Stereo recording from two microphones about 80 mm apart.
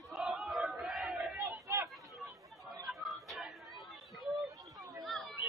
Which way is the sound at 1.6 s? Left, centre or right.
Right.